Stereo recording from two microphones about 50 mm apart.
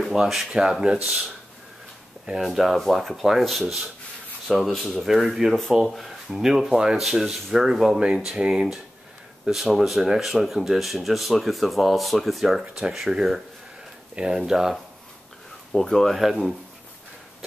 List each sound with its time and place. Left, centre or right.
0.1 s speech: centre
0.6 s speech: centre
2.4 s speech: centre
14.1 s speech: centre
15.7 s speech: centre